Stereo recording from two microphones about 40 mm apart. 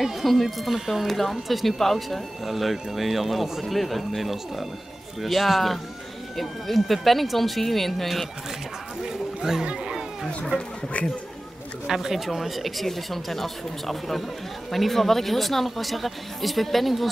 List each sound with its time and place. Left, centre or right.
0.0 s speech: centre
9.0 s a sound: centre
9.7 s chatter: centre
10.5 s speech: right
11.9 s speech: centre